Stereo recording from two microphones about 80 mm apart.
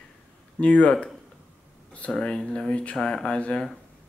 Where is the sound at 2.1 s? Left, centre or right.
Centre.